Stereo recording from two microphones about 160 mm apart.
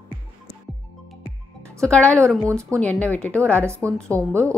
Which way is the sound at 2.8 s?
10° left (ahead or behind).